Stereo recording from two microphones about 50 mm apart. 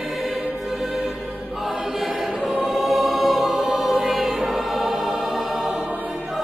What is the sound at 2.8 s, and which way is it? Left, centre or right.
Music, centre.